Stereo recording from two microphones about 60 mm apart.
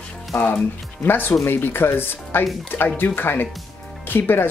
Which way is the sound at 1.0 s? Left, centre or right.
Left.